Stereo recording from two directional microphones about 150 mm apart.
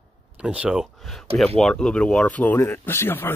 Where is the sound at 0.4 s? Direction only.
10° right (ahead or behind).